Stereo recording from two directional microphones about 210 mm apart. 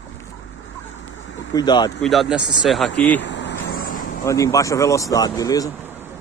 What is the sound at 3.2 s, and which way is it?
Vehicle, 55° left (ahead or behind).